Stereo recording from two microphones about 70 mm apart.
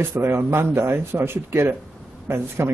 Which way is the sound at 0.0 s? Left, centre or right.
Right.